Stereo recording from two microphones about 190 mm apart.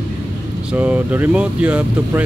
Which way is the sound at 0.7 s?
5° right (ahead or behind).